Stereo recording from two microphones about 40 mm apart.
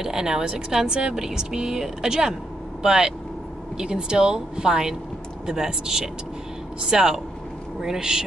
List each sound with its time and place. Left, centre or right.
0.0 s speech: centre